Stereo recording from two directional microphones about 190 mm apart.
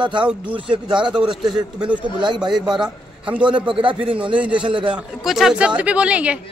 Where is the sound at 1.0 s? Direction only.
5° right (ahead or behind).